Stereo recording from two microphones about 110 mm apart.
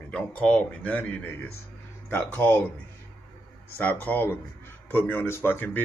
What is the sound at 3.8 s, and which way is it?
Speech, 15° left (ahead or behind).